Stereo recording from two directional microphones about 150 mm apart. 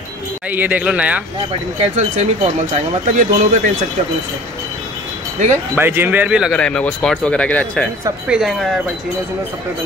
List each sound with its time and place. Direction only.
0.5 s speech: 10° right (ahead or behind)
1.8 s speech: 50° right (ahead or behind)
5.8 s speech: 15° right (ahead or behind)
6.5 s speech: 5° left (ahead or behind)
8.3 s speech: centre (ahead or behind)